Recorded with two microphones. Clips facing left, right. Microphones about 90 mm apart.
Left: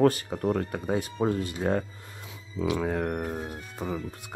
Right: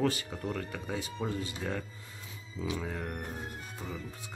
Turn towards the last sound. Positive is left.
turn(degrees=55)  # may be behind; listen again after turning